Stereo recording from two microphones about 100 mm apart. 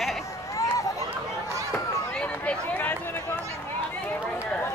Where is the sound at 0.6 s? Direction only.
35° left (ahead or behind).